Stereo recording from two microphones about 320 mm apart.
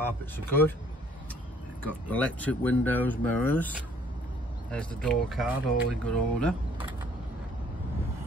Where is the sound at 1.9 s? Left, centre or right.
Centre.